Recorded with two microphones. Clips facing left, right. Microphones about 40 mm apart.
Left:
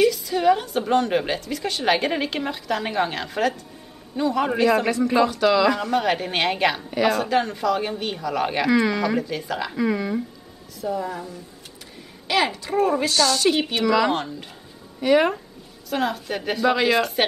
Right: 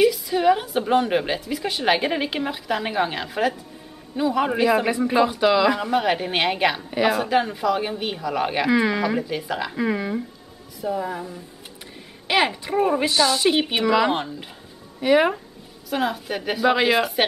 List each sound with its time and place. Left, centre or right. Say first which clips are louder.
0.0 s a woman's voice: right 1 dB; centre
12.3 s a man's voice: right 1 dB; centre